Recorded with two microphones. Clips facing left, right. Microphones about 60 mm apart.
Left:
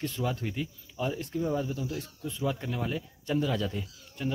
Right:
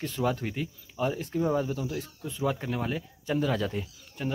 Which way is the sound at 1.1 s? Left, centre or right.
Centre.